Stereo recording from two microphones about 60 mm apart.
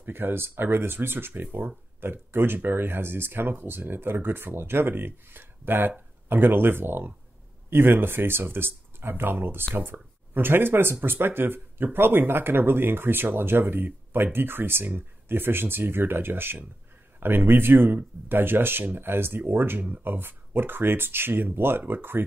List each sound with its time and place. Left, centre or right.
0.0 s speech: right